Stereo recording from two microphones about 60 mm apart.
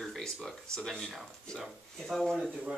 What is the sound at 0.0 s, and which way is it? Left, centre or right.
Speech, centre.